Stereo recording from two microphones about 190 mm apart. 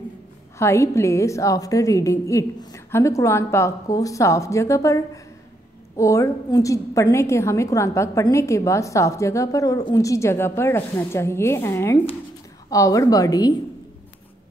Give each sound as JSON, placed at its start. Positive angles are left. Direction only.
{"t": 0.6, "sound": "a woman's voice", "side_deg": 15}